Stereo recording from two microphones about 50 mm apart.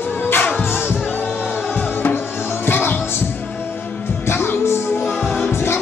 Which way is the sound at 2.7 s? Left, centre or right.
Left.